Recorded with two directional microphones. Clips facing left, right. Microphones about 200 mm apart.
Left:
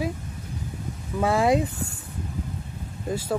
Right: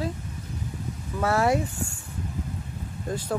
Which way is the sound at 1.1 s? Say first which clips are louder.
Left 2 dB; 15° left (ahead or behind).